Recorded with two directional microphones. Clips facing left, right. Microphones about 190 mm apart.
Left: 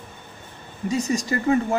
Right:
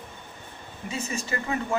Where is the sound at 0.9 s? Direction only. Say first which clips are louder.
Left 8 dB; 40° left (ahead or behind).